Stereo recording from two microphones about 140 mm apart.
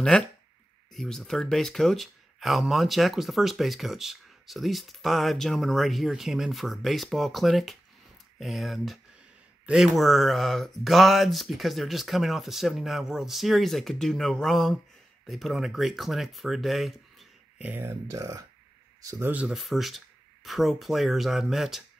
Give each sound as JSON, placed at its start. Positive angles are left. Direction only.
{"t": 0.9, "sound": "speech", "side_deg": 5}
{"t": 17.6, "sound": "speech", "side_deg": -15}
{"t": 19.3, "sound": "speech", "side_deg": 0}